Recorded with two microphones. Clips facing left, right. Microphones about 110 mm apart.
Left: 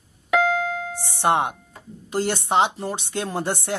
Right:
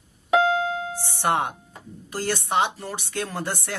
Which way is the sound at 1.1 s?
20° left (ahead or behind).